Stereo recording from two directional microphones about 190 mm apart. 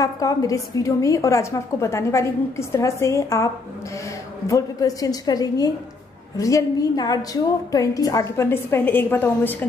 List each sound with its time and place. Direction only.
0.0 s a woman's voice: 20° left (ahead or behind)
4.5 s a woman's voice: 15° left (ahead or behind)